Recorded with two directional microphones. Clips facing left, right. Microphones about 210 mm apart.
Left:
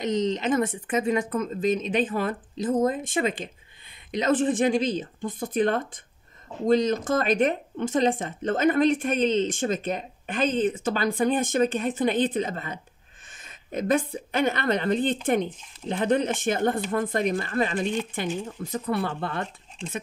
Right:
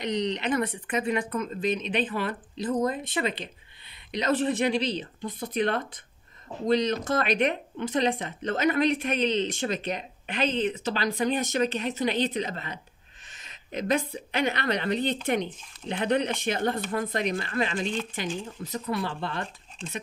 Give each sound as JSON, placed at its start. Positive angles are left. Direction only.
{"t": 0.0, "sound": "speech", "side_deg": 45}
{"t": 13.4, "sound": "a sound", "side_deg": 50}
{"t": 14.3, "sound": "speech", "side_deg": 50}